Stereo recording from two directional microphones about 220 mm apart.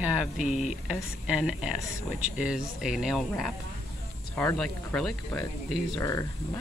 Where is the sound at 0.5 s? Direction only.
30° left (ahead or behind).